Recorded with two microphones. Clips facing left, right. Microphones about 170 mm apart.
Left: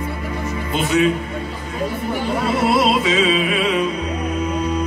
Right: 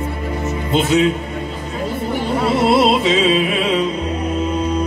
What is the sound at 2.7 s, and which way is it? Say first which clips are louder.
Music: right 3 dB; 25° right (ahead or behind).